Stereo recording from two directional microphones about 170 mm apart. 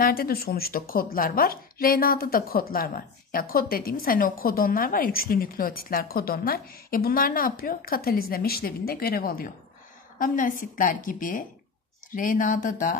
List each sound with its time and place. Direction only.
0.0 s a woman's voice: 60° left (ahead or behind)